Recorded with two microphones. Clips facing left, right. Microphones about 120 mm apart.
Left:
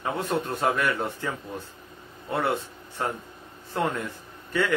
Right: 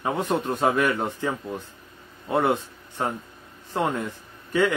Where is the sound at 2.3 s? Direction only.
20° right (ahead or behind).